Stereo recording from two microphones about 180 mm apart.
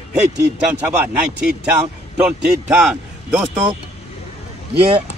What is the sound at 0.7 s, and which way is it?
A man's voice, 10° right (ahead or behind).